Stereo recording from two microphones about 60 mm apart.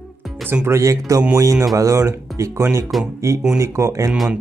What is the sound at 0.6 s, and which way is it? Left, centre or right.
Speech, right.